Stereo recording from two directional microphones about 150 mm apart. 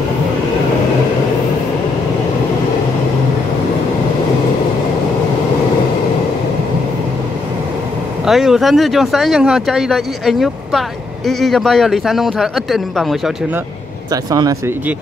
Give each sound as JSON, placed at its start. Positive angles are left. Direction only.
{"t": 8.3, "sound": "speech", "side_deg": -5}
{"t": 14.1, "sound": "speech", "side_deg": -25}